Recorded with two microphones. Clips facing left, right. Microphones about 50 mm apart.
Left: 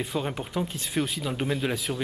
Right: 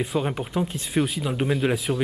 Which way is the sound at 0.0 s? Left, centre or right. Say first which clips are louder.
Right 4 dB; centre.